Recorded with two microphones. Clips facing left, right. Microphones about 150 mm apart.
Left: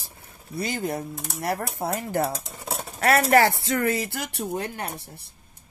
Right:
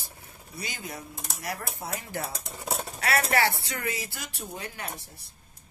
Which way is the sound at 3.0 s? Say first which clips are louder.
Left 8 dB; 45° left (ahead or behind).